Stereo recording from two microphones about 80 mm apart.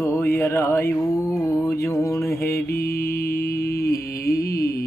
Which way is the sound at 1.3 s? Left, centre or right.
Left.